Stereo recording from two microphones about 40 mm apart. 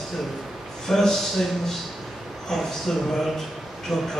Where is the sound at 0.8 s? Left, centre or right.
Centre.